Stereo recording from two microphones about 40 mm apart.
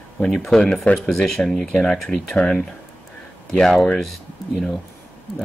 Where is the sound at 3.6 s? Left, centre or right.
Centre.